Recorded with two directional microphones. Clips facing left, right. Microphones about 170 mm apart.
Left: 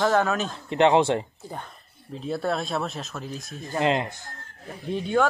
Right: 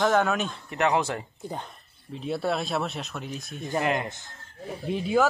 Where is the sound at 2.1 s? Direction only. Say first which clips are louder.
Left 1 dB; centre (ahead or behind).